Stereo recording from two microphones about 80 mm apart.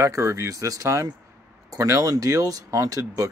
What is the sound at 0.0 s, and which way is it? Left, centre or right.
Speech, right.